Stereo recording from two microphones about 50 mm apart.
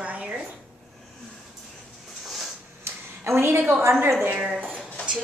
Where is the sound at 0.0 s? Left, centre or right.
Right.